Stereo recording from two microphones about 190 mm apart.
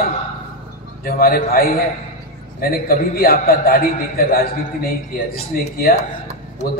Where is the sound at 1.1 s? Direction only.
50° left (ahead or behind).